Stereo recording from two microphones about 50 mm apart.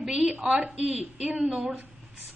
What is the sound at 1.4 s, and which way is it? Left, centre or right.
Speech, centre.